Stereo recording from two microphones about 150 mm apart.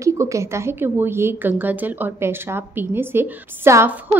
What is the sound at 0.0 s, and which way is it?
A woman's voice, 20° right (ahead or behind).